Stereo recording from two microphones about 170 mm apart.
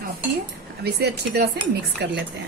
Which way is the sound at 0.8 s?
75° right (ahead or behind).